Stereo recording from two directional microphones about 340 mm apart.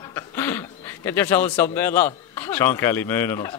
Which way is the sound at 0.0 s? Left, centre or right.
Centre.